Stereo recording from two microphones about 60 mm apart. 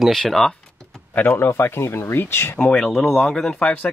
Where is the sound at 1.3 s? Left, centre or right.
Left.